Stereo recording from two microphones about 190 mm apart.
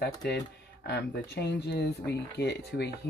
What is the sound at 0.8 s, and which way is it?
Speech, 60° left (ahead or behind).